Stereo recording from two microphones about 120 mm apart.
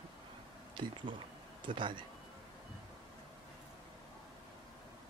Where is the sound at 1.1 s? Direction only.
45° right (ahead or behind).